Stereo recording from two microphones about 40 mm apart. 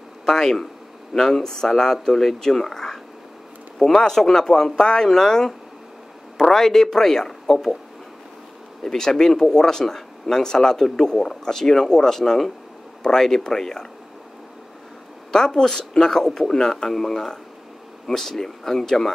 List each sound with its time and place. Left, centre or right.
0.2 s speech: centre
8.8 s speech: centre
15.3 s speech: centre